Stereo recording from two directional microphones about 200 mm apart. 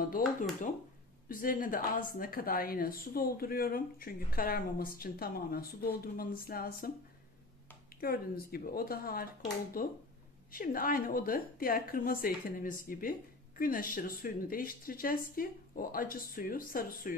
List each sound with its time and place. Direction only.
1.3 s a woman's voice: 45° left (ahead or behind)
8.0 s a woman's voice: 50° left (ahead or behind)